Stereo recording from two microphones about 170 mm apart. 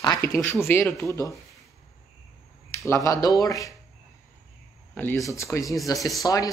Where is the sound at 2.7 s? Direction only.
15° left (ahead or behind).